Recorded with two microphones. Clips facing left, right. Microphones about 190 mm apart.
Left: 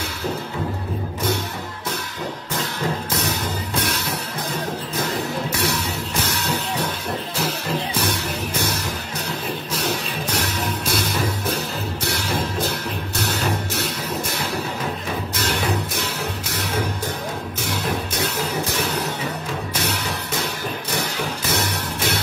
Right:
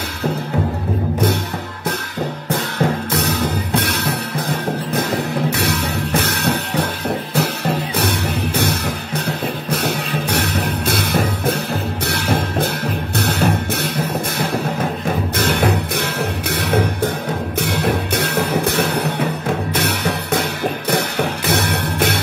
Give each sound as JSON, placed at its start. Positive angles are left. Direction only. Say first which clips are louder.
{"t": 3.1, "sound": "music", "louder": "right 6 dB", "side_deg": -65}
{"t": 15.3, "sound": "music", "louder": "right 5 dB", "side_deg": -55}